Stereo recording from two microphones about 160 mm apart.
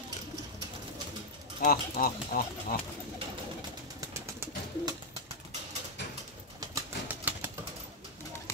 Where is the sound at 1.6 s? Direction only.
65° left (ahead or behind).